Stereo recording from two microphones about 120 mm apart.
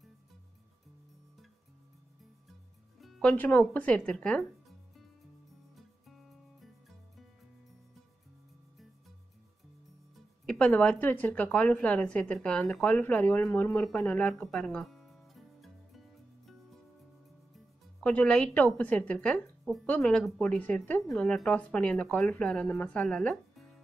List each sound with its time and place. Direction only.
3.0 s music: 5° left (ahead or behind)
3.7 s speech: 10° left (ahead or behind)
5.8 s music: centre (ahead or behind)
10.1 s a woman's voice: 5° left (ahead or behind)
13.7 s music: 10° left (ahead or behind)
18.0 s a woman's voice: 10° left (ahead or behind)